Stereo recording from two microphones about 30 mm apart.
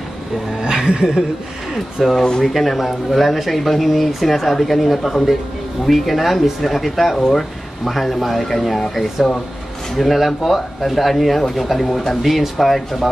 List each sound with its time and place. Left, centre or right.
0.6 s speech: right
2.0 s speech: centre
7.9 s speech: centre
12.2 s speech: centre